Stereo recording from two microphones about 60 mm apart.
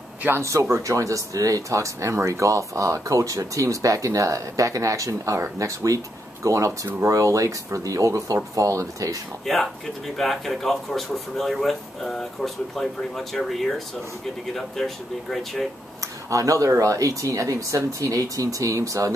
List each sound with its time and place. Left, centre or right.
0.4 s speech: right
9.5 s speech: centre
16.3 s speech: right